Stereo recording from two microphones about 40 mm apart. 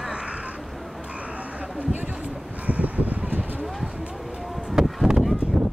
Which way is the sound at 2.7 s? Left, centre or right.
Right.